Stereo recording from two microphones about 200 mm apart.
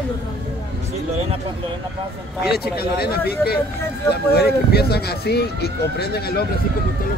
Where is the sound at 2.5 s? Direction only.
50° left (ahead or behind).